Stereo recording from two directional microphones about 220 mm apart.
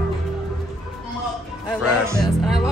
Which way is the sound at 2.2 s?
Centre (ahead or behind).